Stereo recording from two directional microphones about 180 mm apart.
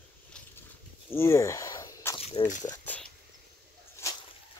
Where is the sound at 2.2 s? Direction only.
35° left (ahead or behind).